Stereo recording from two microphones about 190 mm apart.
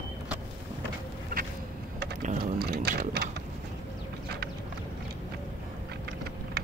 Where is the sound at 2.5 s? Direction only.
60° right (ahead or behind).